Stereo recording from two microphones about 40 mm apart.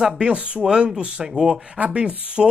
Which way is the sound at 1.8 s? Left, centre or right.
Right.